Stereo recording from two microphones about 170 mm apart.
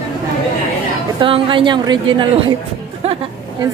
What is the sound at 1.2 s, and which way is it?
A woman's voice, 30° right (ahead or behind).